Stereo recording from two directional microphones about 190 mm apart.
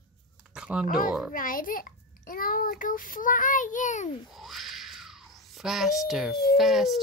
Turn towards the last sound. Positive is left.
turn(degrees=0)  # may be behind; listen again after turning